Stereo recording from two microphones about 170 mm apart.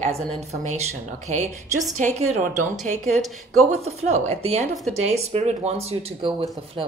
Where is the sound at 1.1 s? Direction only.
45° right (ahead or behind).